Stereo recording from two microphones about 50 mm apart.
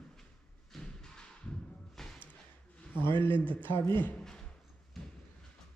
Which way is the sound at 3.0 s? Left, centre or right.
Left.